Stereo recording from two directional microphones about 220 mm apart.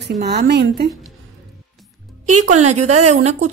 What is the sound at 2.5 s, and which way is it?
Speech, 30° right (ahead or behind).